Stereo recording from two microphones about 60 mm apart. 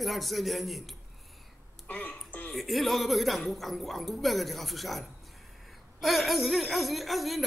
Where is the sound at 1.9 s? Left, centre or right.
Left.